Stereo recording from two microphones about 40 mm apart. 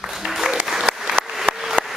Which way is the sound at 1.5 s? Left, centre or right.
Right.